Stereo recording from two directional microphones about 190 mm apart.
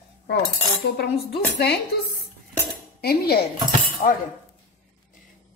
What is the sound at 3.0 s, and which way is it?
Speech, 55° left (ahead or behind).